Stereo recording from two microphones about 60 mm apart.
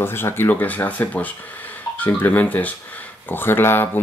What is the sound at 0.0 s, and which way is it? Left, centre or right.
Speech, left.